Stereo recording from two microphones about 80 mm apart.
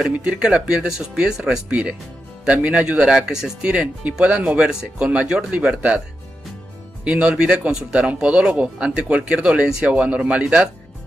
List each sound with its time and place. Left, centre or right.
0.1 s speech: centre
7.1 s speech: centre